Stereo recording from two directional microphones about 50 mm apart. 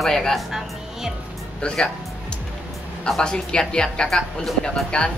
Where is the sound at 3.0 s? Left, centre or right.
Centre.